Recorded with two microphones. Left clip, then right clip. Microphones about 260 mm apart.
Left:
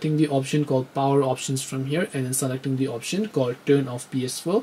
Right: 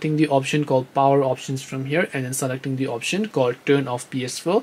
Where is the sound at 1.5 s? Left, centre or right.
Centre.